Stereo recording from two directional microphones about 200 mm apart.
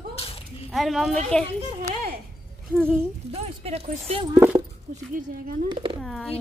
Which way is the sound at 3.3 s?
30° right (ahead or behind).